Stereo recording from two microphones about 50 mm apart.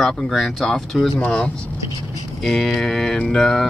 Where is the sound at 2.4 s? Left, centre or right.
Centre.